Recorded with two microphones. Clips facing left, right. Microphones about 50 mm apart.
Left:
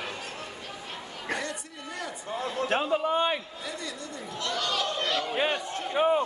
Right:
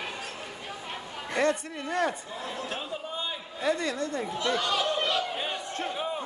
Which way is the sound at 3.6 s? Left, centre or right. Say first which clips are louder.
Right 9 dB; right.